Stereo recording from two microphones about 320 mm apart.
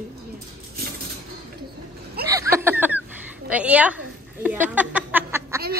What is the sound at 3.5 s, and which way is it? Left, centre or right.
Speech, centre.